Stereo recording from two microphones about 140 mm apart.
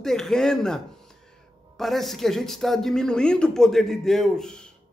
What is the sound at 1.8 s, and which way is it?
A man's voice, centre (ahead or behind).